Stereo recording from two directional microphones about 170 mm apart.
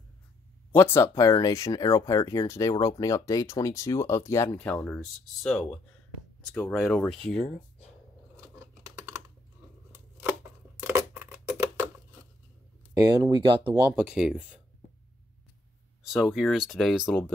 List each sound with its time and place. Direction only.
0.7 s speech: 15° left (ahead or behind)
10.8 s a sound: 15° right (ahead or behind)
12.9 s speech: 20° right (ahead or behind)
13.9 s speech: 5° right (ahead or behind)
16.0 s speech: 5° right (ahead or behind)
17.0 s speech: 10° left (ahead or behind)